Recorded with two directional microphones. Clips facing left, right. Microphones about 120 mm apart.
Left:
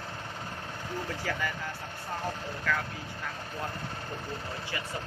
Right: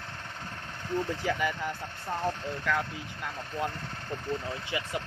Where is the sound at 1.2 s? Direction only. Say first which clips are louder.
Right 3 dB; 20° right (ahead or behind).